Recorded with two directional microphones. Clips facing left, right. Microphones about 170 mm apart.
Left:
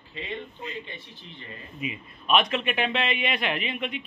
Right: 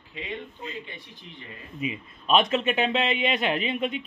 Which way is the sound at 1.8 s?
30° right (ahead or behind).